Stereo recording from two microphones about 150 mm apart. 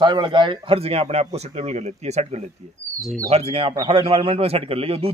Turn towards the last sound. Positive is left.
turn(degrees=-40)  # may be behind; listen again after turning